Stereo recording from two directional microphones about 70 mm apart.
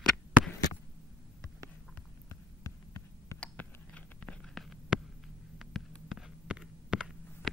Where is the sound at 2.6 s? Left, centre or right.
Left.